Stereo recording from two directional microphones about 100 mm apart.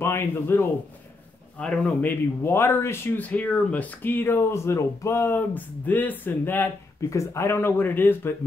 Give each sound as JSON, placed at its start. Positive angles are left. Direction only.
{"t": 0.0, "sound": "a man's voice", "side_deg": 25}
{"t": 7.0, "sound": "a man's voice", "side_deg": 30}